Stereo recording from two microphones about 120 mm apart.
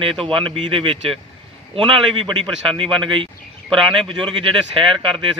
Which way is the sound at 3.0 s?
45° right (ahead or behind).